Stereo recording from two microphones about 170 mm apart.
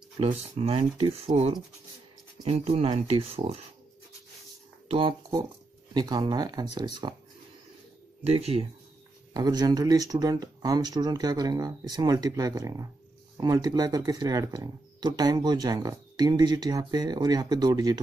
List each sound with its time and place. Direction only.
0.2 s speech: 35° right (ahead or behind)
4.8 s speech: 30° right (ahead or behind)
8.2 s speech: 35° right (ahead or behind)
9.3 s speech: 25° right (ahead or behind)